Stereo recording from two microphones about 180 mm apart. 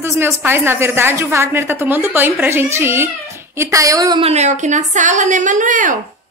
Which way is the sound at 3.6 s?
15° right (ahead or behind).